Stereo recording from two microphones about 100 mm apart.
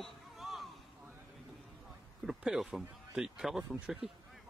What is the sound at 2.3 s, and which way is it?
Speech, 5° right (ahead or behind).